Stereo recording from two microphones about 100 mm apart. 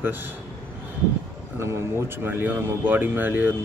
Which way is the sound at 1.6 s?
25° right (ahead or behind).